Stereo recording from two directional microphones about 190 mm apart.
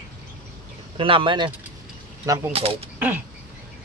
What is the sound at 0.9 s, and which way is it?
Speech, 25° right (ahead or behind).